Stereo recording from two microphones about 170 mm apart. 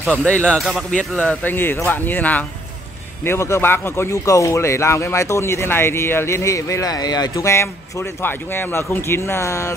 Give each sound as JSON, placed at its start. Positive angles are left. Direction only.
{"t": 0.0, "sound": "speech", "side_deg": 0}